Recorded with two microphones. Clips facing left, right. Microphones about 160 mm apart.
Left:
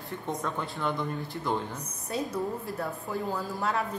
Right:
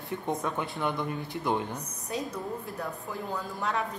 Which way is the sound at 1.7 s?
Centre (ahead or behind).